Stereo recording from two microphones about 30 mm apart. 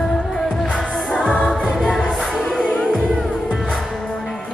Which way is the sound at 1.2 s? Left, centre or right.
Left.